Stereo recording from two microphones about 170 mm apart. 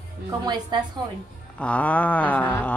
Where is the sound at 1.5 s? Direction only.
10° left (ahead or behind).